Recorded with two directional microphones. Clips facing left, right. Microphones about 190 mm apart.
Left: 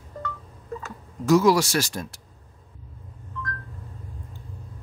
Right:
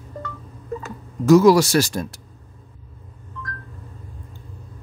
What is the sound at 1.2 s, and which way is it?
Speech, 40° right (ahead or behind).